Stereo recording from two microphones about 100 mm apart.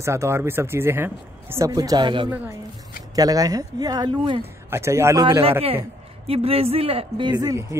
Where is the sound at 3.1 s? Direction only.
40° right (ahead or behind).